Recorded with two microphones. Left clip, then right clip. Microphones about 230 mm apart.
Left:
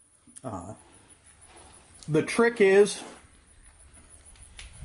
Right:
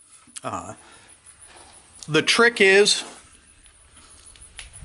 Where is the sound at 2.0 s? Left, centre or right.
Centre.